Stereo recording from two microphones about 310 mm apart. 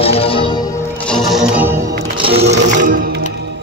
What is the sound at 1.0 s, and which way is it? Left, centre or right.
Music, centre.